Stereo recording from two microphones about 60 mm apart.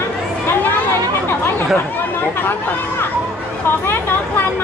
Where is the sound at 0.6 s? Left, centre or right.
Left.